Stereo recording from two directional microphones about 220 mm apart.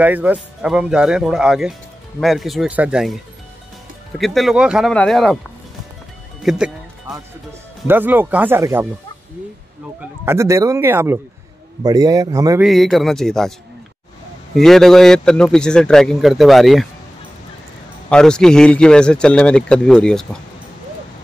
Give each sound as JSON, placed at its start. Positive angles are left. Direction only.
{"t": 0.0, "sound": "speech", "side_deg": -5}
{"t": 4.2, "sound": "speech", "side_deg": 0}
{"t": 6.5, "sound": "speech", "side_deg": 0}
{"t": 7.8, "sound": "speech", "side_deg": -10}
{"t": 10.2, "sound": "speech", "side_deg": -10}
{"t": 12.6, "sound": "speech", "side_deg": 0}
{"t": 14.5, "sound": "speech", "side_deg": 0}
{"t": 18.1, "sound": "speech", "side_deg": 5}